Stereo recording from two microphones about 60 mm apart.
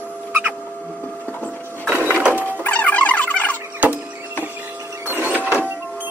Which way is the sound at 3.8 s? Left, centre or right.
Right.